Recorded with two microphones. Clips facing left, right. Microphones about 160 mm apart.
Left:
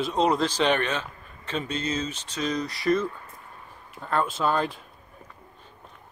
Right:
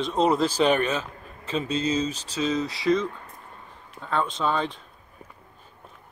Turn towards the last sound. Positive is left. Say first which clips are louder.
# left 1 dB
turn(degrees=5)  # may be behind; listen again after turning